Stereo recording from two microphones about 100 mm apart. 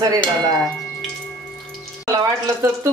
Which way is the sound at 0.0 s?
45° right (ahead or behind).